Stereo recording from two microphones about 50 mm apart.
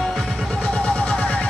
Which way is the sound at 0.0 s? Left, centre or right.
Centre.